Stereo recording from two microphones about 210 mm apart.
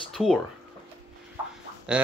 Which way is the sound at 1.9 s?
5° right (ahead or behind).